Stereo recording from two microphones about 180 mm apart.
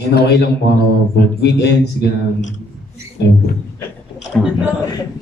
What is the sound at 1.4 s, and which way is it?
Speech, 65° left (ahead or behind).